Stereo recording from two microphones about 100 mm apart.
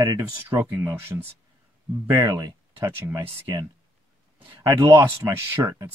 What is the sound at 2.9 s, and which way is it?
Speech, 25° right (ahead or behind).